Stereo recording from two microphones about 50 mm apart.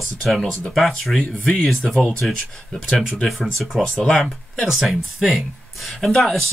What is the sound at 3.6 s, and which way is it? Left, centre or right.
Speech, centre.